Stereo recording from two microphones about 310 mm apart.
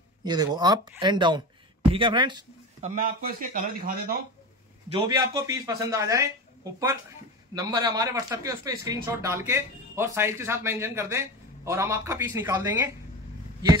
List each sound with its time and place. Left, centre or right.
0.2 s a man's voice: centre
4.9 s a man's voice: centre
7.5 s a man's voice: centre